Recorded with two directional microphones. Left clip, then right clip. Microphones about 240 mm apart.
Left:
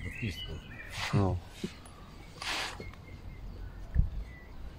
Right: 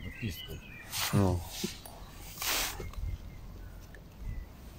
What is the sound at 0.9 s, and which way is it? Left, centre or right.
Speech, right.